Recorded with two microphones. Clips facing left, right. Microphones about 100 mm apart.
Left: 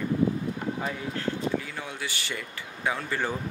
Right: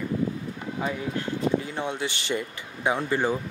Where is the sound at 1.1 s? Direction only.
20° right (ahead or behind).